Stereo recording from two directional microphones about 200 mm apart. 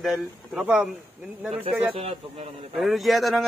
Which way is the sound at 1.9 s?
30° right (ahead or behind).